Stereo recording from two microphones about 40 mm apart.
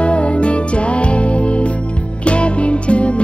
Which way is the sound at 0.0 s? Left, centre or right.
Left.